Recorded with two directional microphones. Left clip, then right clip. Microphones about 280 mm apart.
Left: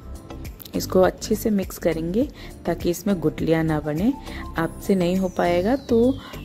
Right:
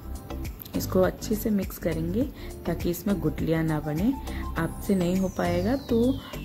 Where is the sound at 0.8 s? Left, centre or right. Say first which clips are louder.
Left 6 dB; left.